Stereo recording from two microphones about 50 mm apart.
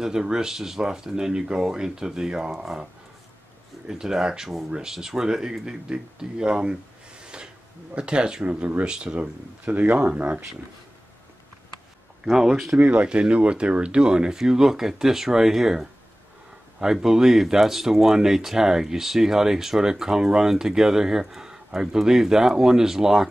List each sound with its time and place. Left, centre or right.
0.0 s speech: centre; by 10.4 s right
12.3 s speech: centre
12.7 s speech: right; by 23.2 s centre